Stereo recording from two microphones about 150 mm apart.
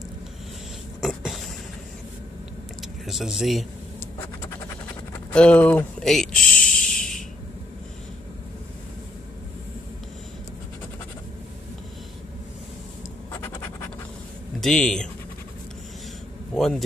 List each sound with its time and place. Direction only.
1.0 s a sound: centre (ahead or behind)
2.8 s speech: centre (ahead or behind)
5.3 s speech: 5° left (ahead or behind)
6.9 s a sound: 5° left (ahead or behind)
13.3 s scratch: 15° left (ahead or behind)
14.6 s speech: 5° left (ahead or behind)
16.5 s speech: 5° left (ahead or behind)